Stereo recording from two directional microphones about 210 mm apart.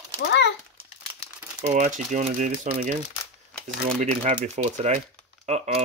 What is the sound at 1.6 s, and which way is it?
Speech, 35° right (ahead or behind).